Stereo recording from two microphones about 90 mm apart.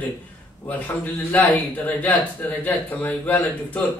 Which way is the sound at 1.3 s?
15° left (ahead or behind).